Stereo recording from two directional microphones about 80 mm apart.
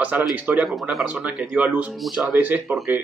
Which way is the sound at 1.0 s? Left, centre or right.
Centre.